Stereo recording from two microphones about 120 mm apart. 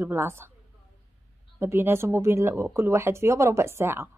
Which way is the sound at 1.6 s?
20° right (ahead or behind).